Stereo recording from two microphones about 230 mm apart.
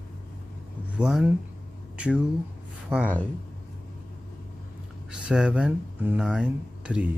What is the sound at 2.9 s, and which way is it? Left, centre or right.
Speech, centre.